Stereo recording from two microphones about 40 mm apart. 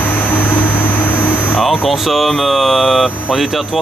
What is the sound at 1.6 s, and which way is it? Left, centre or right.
Speech, centre.